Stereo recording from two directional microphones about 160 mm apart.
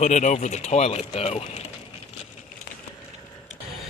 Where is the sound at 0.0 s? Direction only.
50° left (ahead or behind).